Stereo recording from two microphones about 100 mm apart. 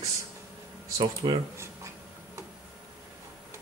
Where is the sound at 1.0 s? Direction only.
50° right (ahead or behind).